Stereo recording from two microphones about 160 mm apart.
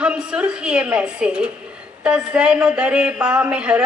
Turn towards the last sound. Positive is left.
turn(degrees=-5)  # may be behind; listen again after turning